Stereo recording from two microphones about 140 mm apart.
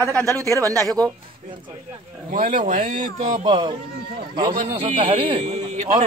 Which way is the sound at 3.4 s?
35° right (ahead or behind).